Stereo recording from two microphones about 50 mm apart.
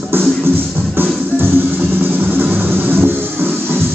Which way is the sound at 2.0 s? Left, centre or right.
Right.